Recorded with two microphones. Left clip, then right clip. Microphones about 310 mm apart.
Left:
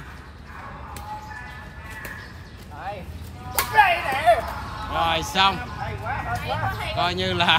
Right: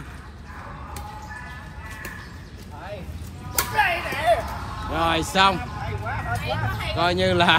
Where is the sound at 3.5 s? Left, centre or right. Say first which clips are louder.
Left 4 dB; centre.